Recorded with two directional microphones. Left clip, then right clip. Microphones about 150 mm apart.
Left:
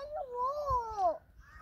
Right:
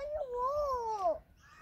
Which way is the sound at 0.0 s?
10° right (ahead or behind).